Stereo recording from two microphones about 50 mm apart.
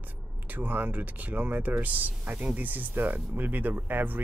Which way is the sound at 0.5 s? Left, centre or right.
Right.